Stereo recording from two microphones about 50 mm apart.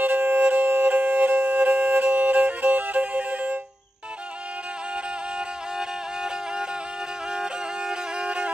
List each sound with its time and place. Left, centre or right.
0.0 s music: right
7.3 s music: centre